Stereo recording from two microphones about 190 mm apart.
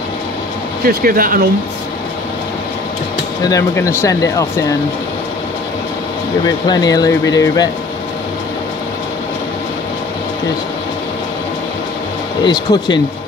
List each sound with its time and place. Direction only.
0.8 s speech: 50° right (ahead or behind)
3.4 s speech: 15° left (ahead or behind)
6.7 s speech: 20° left (ahead or behind)
12.4 s speech: 20° left (ahead or behind)